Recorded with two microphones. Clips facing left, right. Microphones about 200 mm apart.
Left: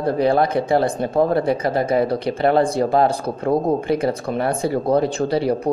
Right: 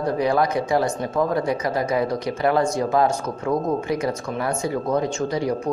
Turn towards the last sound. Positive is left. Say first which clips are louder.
# left 4 dB
turn(degrees=30)  # may be behind; listen again after turning